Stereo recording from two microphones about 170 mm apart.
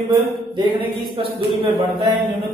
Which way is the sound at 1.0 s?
30° right (ahead or behind).